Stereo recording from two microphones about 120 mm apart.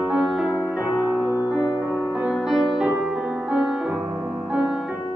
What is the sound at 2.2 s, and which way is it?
Music, 5° right (ahead or behind).